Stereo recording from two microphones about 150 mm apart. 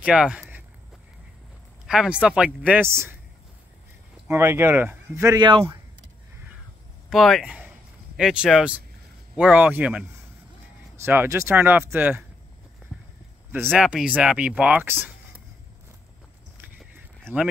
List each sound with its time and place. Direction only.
0.0 s a sound: 5° right (ahead or behind)
1.9 s speech: 5° right (ahead or behind)
4.3 s speech: 15° right (ahead or behind)
7.1 s speech: centre (ahead or behind)
11.1 s speech: 15° right (ahead or behind)
13.7 s speech: 5° right (ahead or behind)
16.6 s a sound: 10° right (ahead or behind)